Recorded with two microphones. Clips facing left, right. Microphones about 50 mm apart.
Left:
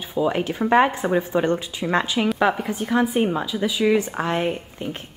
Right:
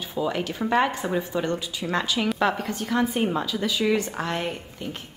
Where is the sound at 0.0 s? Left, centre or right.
Centre.